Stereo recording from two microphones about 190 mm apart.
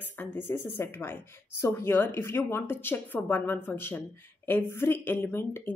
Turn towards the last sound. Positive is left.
turn(degrees=15)  # may be behind; listen again after turning